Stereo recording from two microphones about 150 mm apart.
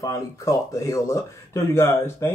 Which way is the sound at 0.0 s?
20° left (ahead or behind).